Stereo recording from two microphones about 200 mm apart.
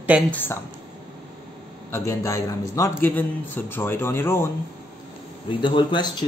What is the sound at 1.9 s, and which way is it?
A man's voice, 15° left (ahead or behind).